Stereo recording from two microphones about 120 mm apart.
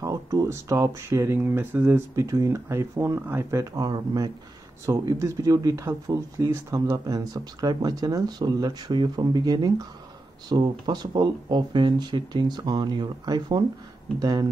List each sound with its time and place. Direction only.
0.0 s speech: 25° right (ahead or behind)